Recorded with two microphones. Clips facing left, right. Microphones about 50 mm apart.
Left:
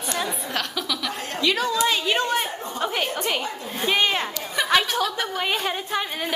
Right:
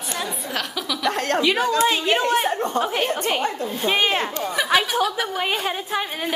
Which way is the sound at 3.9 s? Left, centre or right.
Centre.